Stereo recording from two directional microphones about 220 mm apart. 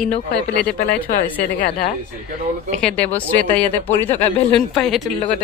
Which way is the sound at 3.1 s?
5° left (ahead or behind).